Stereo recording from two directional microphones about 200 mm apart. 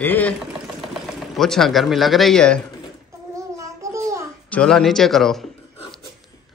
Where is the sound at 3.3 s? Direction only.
15° right (ahead or behind).